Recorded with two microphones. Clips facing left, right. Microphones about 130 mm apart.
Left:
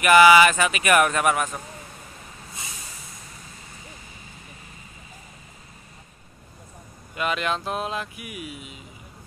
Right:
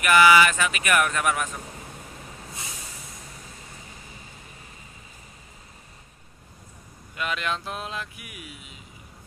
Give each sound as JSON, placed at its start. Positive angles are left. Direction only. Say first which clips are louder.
{"t": 0.0, "sound": "speech", "louder": "left 3 dB", "side_deg": 15}
{"t": 7.2, "sound": "speech", "louder": "left 4 dB", "side_deg": 10}
{"t": 7.5, "sound": "a sound", "louder": "left 5 dB", "side_deg": 40}
{"t": 8.2, "sound": "speech", "louder": "left 7 dB", "side_deg": 10}